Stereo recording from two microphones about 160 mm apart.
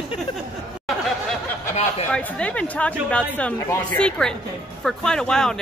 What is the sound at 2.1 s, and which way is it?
Speech, 10° left (ahead or behind).